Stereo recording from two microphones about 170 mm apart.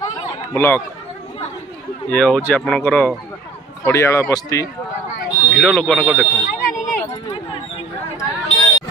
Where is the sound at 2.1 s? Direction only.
5° left (ahead or behind).